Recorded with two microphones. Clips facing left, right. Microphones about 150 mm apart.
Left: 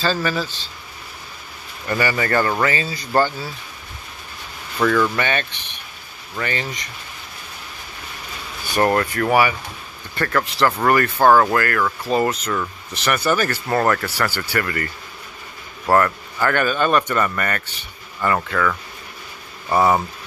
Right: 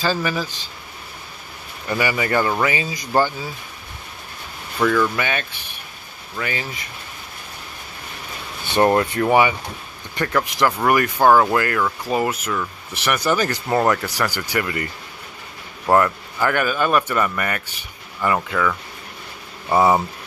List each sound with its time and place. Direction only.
0.0 s speech: 15° right (ahead or behind)
1.9 s speech: 15° right (ahead or behind)
4.7 s speech: 5° right (ahead or behind)
8.6 s speech: 20° right (ahead or behind)
15.9 s speech: 10° right (ahead or behind)